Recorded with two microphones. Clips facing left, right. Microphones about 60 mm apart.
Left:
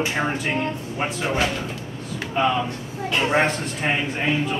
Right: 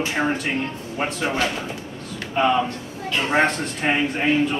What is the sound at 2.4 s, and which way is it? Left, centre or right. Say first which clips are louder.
A man's voice: right 2 dB; centre.